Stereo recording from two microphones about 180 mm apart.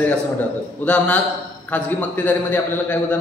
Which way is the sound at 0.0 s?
5° left (ahead or behind).